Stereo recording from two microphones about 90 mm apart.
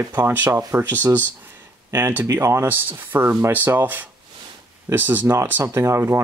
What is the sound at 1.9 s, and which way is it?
Speech, 25° right (ahead or behind).